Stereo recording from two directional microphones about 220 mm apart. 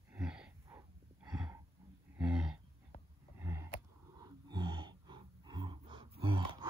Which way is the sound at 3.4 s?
10° right (ahead or behind).